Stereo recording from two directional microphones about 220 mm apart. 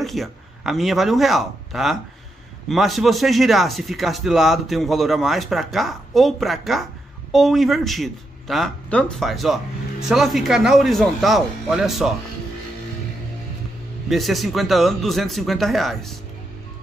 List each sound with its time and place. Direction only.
0.0 s speech: centre (ahead or behind)
14.0 s speech: centre (ahead or behind)